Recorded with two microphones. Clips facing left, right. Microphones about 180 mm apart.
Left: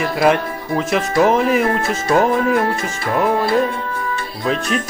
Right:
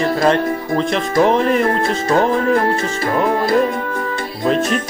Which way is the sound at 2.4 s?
35° right (ahead or behind).